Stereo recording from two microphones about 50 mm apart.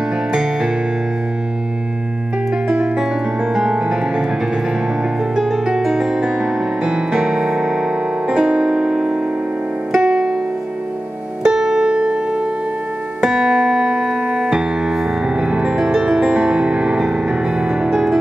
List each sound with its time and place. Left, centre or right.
0.3 s music: centre
2.7 s piano: centre
3.5 s music: centre
5.3 s music: centre
11.4 s music: centre
13.2 s keyboard: centre
15.3 s music: right